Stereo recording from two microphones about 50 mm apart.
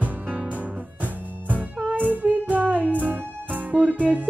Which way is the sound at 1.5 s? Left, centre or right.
Right.